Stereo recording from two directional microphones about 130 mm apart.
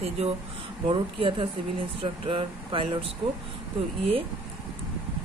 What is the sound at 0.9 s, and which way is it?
Speech, 40° right (ahead or behind).